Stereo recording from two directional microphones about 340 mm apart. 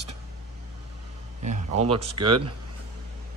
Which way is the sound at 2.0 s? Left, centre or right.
Right.